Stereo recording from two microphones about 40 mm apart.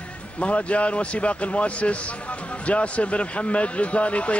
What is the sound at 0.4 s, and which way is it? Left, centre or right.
Speech, left.